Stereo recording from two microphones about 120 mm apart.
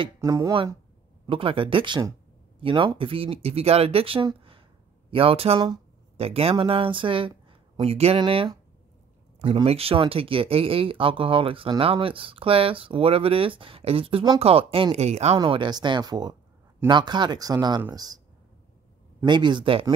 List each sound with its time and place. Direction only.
0.2 s speech: 25° right (ahead or behind)
1.2 s speech: 45° right (ahead or behind)
9.7 s speech: 55° right (ahead or behind)
15.3 s speech: 40° right (ahead or behind)
19.2 s speech: 40° right (ahead or behind)